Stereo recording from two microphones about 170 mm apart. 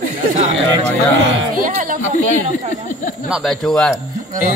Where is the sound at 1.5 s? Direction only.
55° right (ahead or behind).